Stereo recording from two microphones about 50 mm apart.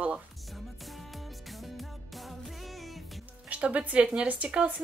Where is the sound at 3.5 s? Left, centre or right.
Right.